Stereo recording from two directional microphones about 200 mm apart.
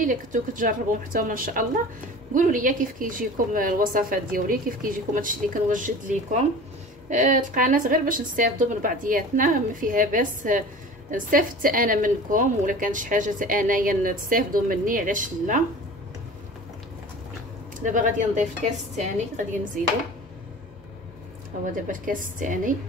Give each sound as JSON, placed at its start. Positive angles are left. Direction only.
{"t": 0.0, "sound": "a woman's voice", "side_deg": -40}
{"t": 17.7, "sound": "a woman's voice", "side_deg": -40}
{"t": 21.8, "sound": "a woman's voice", "side_deg": -40}